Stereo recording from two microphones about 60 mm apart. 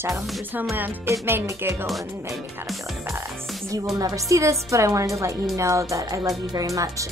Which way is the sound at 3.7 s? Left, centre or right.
Right.